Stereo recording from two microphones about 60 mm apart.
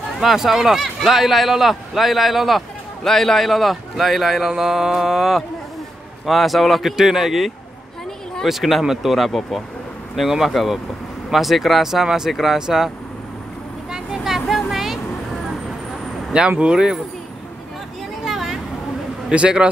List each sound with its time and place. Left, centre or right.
0.2 s speech: centre
13.9 s vehicle: centre
16.3 s speech: centre
18.2 s vehicle: centre
19.2 s speech: centre